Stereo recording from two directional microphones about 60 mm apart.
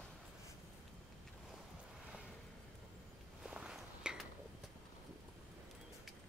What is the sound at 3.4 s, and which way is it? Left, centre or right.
Walk, centre.